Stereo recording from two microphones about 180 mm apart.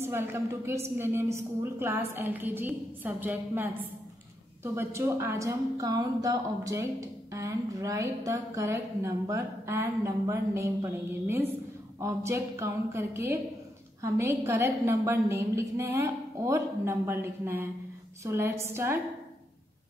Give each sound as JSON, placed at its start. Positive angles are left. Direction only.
{"t": 0.0, "sound": "speech", "side_deg": -15}
{"t": 4.7, "sound": "speech", "side_deg": -15}